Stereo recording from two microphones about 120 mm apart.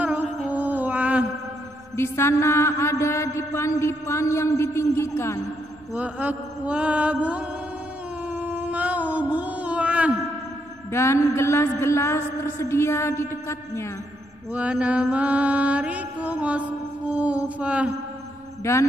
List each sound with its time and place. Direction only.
0.0 s music: 15° right (ahead or behind)
0.5 s a sound: 15° right (ahead or behind)
2.0 s mantra: 20° left (ahead or behind)
5.9 s mantra: 10° right (ahead or behind)
8.3 s a sound: 15° right (ahead or behind)
10.9 s mantra: 20° left (ahead or behind)
14.5 s mantra: 10° right (ahead or behind)
18.6 s mantra: 25° left (ahead or behind)